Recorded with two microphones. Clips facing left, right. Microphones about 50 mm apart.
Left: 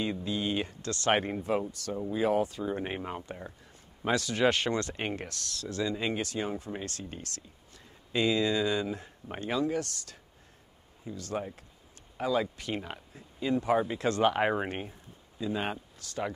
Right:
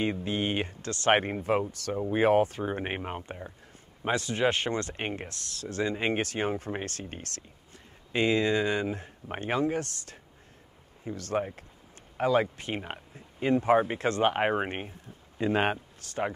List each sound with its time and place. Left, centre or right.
0.0 s speech: right
1.4 s speech: right
11.1 s speech: right
12.5 s speech: right
13.4 s speech: right
15.3 s speech: right